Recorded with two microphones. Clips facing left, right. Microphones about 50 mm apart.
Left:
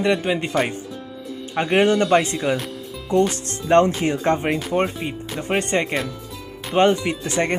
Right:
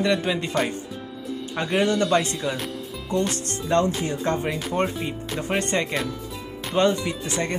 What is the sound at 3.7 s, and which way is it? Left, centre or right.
Speech, left.